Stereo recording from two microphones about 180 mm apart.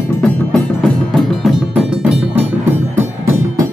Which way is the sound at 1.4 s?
5° right (ahead or behind).